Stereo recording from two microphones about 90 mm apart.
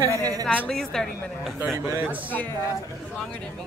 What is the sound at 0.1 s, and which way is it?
Speech, 45° right (ahead or behind).